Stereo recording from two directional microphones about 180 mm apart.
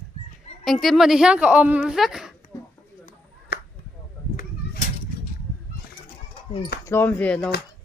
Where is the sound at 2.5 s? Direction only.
20° left (ahead or behind).